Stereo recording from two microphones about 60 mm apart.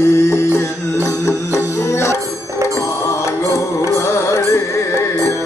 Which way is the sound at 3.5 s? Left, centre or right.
Left.